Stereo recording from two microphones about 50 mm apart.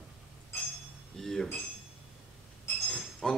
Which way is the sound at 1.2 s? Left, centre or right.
Centre.